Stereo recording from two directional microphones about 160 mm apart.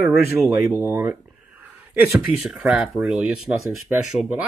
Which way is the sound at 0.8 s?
15° right (ahead or behind).